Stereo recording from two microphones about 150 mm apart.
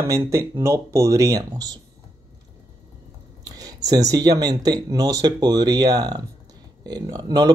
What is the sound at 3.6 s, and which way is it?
Speech, 25° right (ahead or behind).